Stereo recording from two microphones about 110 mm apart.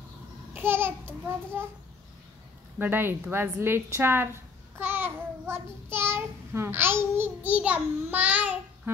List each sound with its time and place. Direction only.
0.6 s a woman's voice: 20° right (ahead or behind)
2.8 s a woman's voice: 20° right (ahead or behind)